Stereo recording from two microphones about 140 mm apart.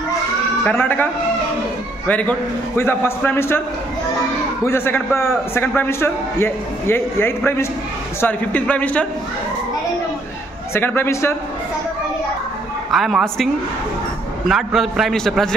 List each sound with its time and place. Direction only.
0.7 s a man's voice: 15° left (ahead or behind)
4.6 s a man's voice: 15° left (ahead or behind)
10.7 s a man's voice: 15° left (ahead or behind)
12.9 s a man's voice: centre (ahead or behind)
14.5 s a man's voice: centre (ahead or behind)